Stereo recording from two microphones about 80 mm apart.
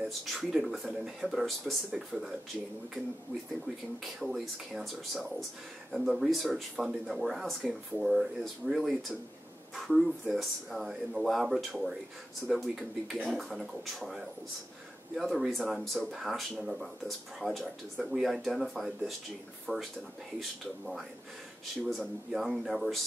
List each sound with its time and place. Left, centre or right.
0.3 s speech: centre
3.6 s speech: centre
19.7 s speech: centre
20.3 s speech: centre